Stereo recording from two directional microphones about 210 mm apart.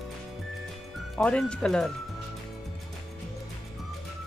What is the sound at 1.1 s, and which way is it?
Speech, 5° left (ahead or behind).